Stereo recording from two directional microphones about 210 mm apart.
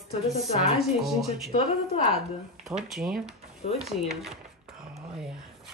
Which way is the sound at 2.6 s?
Centre (ahead or behind).